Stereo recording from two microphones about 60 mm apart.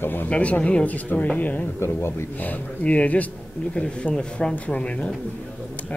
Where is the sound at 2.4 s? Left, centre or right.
Left.